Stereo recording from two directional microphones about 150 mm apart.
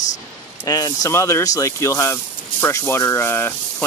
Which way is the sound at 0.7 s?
25° left (ahead or behind).